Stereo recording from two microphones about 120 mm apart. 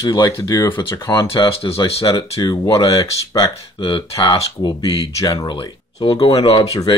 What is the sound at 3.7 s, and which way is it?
Speech, 45° left (ahead or behind).